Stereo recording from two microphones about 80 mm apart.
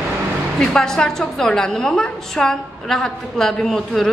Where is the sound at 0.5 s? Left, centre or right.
Centre.